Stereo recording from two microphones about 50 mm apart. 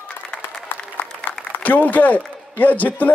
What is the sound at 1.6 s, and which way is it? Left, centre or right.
A man's voice, left.